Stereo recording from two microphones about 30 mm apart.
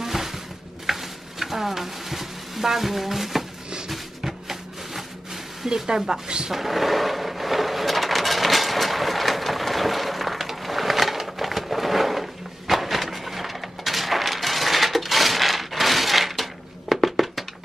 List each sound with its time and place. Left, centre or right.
0.0 s music: centre
0.8 s stir: centre
4.2 s a sound: centre
5.9 s speech: centre
6.2 s speech: right
6.5 s a sound: centre